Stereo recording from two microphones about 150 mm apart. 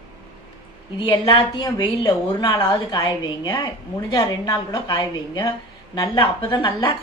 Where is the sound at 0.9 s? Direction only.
35° left (ahead or behind).